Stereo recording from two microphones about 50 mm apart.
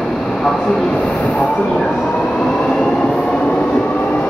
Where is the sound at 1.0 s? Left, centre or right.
Centre.